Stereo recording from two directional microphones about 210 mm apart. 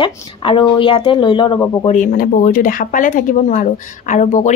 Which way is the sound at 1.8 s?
35° left (ahead or behind).